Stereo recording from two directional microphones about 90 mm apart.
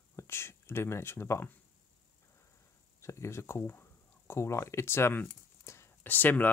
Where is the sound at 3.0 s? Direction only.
30° left (ahead or behind).